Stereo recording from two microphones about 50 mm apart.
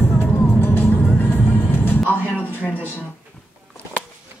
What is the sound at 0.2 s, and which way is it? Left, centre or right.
Music, left.